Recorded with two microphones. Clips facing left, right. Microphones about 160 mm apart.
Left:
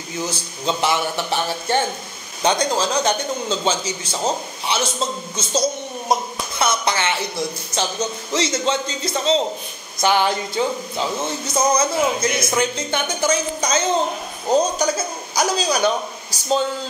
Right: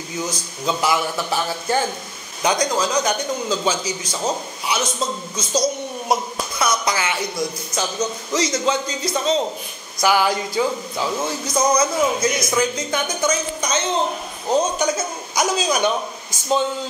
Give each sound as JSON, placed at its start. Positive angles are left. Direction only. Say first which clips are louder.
{"t": 0.2, "sound": "a man's voice", "louder": "left 1 dB", "side_deg": 30}